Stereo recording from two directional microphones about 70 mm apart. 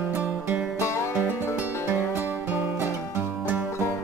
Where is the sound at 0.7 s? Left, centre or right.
Left.